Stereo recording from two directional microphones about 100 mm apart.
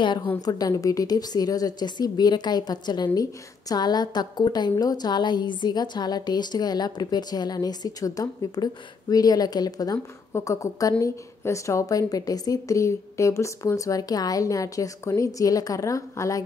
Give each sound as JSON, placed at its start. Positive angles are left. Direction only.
{"t": 0.0, "sound": "a woman's voice", "side_deg": 55}
{"t": 0.5, "sound": "a woman's voice", "side_deg": 40}